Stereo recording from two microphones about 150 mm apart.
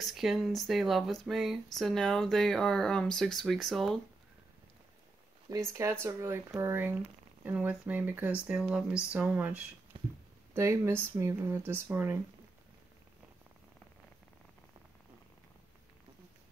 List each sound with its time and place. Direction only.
0.0 s speech: centre (ahead or behind)
5.5 s speech: 20° right (ahead or behind)
9.9 s a sound: 35° right (ahead or behind)
10.5 s speech: 20° right (ahead or behind)